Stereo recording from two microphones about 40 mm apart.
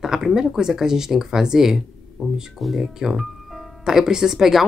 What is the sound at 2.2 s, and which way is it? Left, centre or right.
Speech, centre.